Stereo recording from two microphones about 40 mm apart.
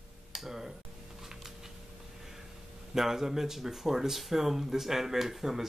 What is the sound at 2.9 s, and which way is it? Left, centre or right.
Speech, centre.